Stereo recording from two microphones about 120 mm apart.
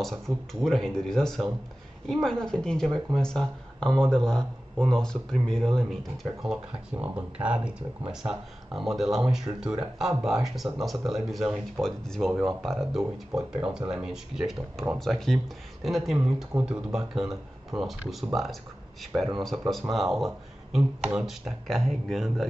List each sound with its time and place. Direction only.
0.0 s speech: centre (ahead or behind)
6.4 s speech: 5° right (ahead or behind)